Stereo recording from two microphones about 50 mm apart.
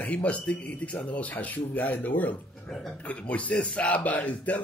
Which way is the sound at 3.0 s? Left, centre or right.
Left.